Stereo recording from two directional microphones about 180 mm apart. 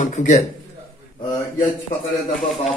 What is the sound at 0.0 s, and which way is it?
Speech, 40° left (ahead or behind).